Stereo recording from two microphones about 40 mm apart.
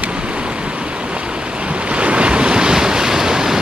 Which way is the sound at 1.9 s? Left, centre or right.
Right.